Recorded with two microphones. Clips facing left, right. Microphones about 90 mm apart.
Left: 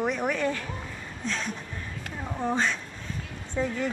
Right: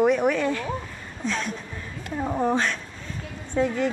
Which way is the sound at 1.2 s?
15° right (ahead or behind).